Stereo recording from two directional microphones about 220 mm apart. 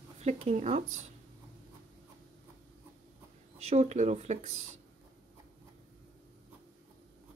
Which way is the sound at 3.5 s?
30° right (ahead or behind).